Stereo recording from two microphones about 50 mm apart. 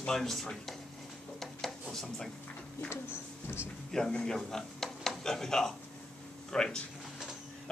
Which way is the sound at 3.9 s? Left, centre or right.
Centre.